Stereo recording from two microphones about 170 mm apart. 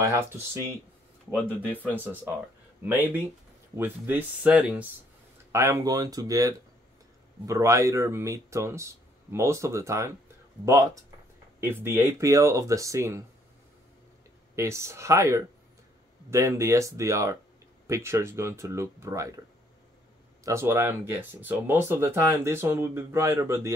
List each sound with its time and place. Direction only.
0.0 s speech: 20° right (ahead or behind)
1.3 s speech: 5° left (ahead or behind)
1.9 s speech: 10° right (ahead or behind)
5.5 s speech: 15° right (ahead or behind)
14.5 s speech: 15° right (ahead or behind)
20.4 s speech: 15° right (ahead or behind)